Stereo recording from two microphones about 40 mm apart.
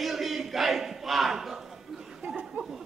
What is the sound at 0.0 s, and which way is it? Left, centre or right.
Battle cry, centre.